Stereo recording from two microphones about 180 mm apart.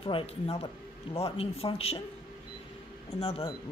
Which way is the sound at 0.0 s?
30° left (ahead or behind).